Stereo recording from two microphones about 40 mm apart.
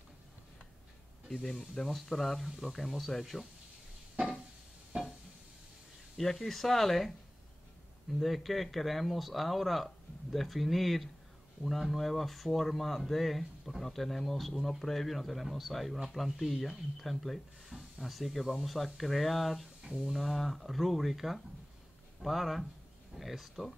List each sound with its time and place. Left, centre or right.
1.3 s speech: centre
4.9 s a sound: right
6.1 s speech: centre
8.2 s speech: centre
19.8 s a sound: right
20.1 s speech: centre